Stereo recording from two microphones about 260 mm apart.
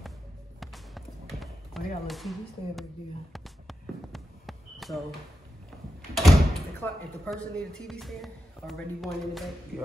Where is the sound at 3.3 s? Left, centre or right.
Centre.